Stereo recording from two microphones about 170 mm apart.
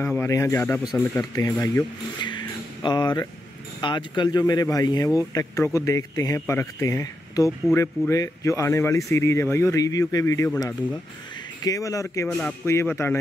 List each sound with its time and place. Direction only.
0.0 s speech: 10° left (ahead or behind)
12.3 s speech: 5° left (ahead or behind)